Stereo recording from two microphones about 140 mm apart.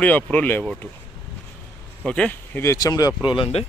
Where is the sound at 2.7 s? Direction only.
25° left (ahead or behind).